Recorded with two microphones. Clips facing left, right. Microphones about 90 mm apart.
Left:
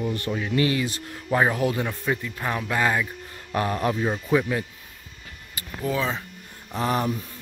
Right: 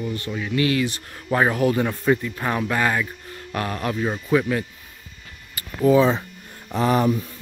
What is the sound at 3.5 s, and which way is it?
Speech, 15° left (ahead or behind).